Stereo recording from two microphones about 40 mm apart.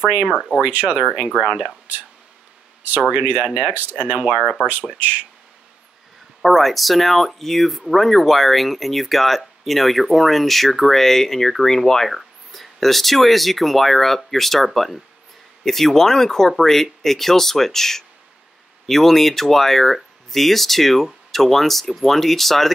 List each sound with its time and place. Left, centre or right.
0.6 s speech: right
1.0 s speech: right
3.1 s speech: right
4.2 s speech: right
4.9 s speech: right
6.4 s speech: centre